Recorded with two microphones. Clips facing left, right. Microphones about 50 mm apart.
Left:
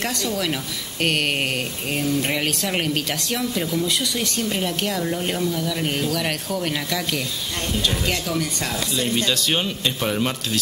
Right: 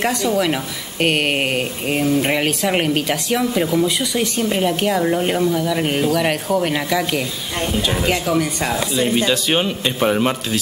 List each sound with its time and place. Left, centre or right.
0.0 s speech: centre